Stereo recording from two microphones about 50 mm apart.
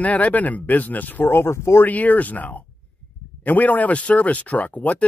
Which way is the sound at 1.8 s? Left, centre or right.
Left.